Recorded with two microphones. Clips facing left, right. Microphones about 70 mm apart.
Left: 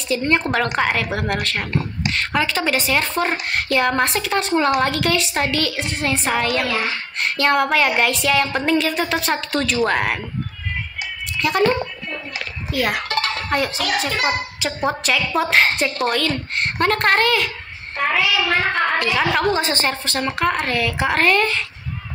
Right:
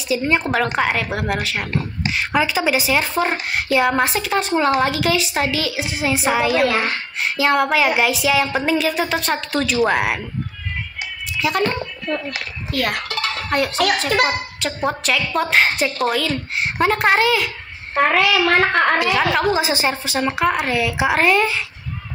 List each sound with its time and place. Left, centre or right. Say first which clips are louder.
0.1 s a woman's voice: even; centre
11.4 s a woman's voice: left 2 dB; centre
13.5 s a sound: right 3 dB; centre
14.2 s a woman's voice: right 1 dB; centre
17.9 s a woman's voice: right 4 dB; right
18.9 s a woman's voice: right 1 dB; centre